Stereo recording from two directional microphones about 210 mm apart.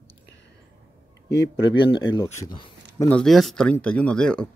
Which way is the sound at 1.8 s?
25° left (ahead or behind).